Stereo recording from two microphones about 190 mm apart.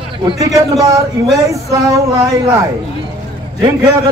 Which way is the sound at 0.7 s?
15° right (ahead or behind).